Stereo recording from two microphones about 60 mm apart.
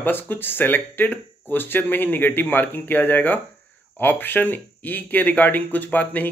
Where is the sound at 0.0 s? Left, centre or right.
Left.